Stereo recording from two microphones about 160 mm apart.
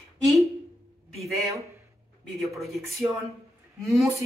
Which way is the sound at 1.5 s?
20° right (ahead or behind).